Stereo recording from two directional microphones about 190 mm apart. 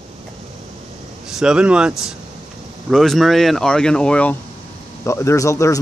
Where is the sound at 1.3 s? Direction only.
5° right (ahead or behind).